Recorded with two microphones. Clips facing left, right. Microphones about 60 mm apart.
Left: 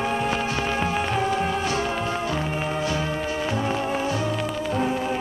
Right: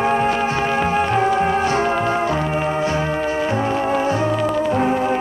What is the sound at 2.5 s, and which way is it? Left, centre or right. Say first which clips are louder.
Brass instrument: right 6 dB; right.